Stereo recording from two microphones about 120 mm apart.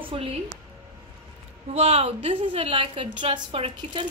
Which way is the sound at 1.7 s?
60° right (ahead or behind).